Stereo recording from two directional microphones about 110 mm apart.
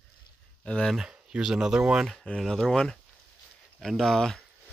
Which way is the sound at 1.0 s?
5° right (ahead or behind).